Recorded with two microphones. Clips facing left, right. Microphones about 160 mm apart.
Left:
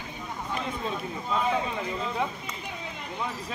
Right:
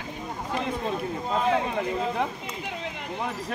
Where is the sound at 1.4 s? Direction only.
65° right (ahead or behind).